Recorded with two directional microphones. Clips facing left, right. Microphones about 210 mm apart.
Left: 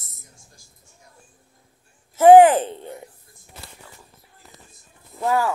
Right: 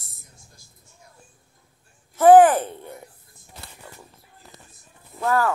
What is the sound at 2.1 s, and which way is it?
Speech, 15° left (ahead or behind).